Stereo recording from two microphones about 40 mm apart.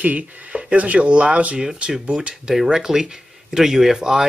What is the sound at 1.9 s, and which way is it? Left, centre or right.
Speech, centre.